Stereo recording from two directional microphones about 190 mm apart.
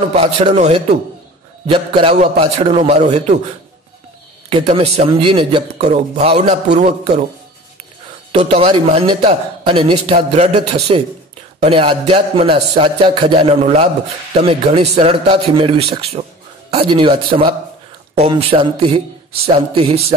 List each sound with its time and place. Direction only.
0.1 s speech: 35° right (ahead or behind)
4.5 s speech: 30° right (ahead or behind)
8.3 s a man's voice: 30° right (ahead or behind)